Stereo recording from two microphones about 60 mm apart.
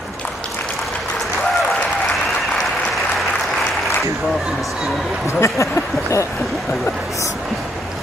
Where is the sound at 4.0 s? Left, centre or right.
Centre.